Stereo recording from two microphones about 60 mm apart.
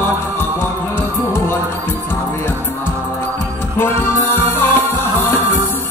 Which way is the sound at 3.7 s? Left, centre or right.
Left.